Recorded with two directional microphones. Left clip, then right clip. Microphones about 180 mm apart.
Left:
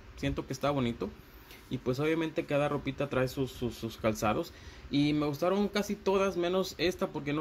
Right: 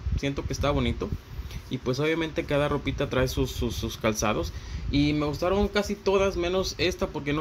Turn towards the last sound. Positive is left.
turn(degrees=5)  # may be behind; listen again after turning